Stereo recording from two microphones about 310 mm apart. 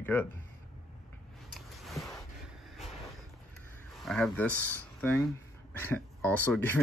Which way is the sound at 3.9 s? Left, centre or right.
Centre.